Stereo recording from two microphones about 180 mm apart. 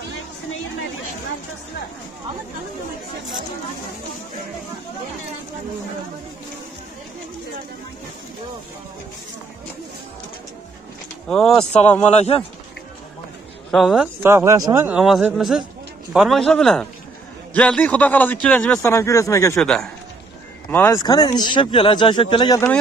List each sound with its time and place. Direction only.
11.2 s a man's voice: 5° left (ahead or behind)
12.0 s speech: 35° left (ahead or behind)
13.7 s speech: centre (ahead or behind)
14.2 s a man's voice: 15° right (ahead or behind); by 19.6 s 15° left (ahead or behind)
19.6 s a man's voice: 5° left (ahead or behind)
20.7 s speech: 15° left (ahead or behind)